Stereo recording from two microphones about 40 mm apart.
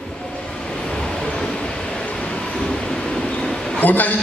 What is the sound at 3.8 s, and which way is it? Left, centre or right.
Speech, left.